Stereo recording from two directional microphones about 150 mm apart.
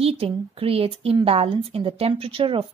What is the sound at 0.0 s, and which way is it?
A woman's voice, 40° right (ahead or behind).